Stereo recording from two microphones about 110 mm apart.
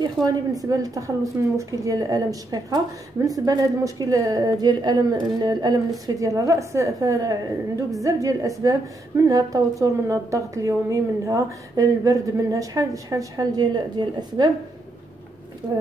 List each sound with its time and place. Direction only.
0.0 s a woman's voice: 35° right (ahead or behind)
15.6 s a woman's voice: 35° right (ahead or behind)